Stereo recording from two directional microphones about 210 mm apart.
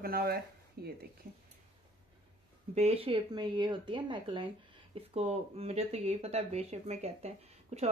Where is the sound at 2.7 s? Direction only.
30° right (ahead or behind).